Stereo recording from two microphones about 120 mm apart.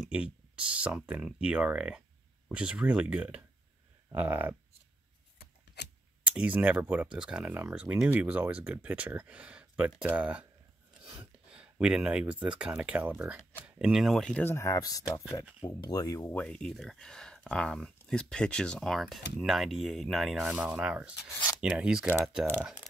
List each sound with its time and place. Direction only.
0.0 s speech: 10° right (ahead or behind)
6.2 s speech: 10° right (ahead or behind)
11.5 s speech: 5° right (ahead or behind)
14.3 s speech: 20° left (ahead or behind); by 22.1 s 10° right (ahead or behind)